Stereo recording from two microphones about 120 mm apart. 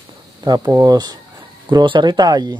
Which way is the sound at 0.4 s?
30° right (ahead or behind).